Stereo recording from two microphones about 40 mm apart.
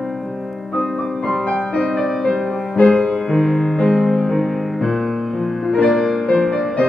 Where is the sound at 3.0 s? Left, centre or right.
Centre.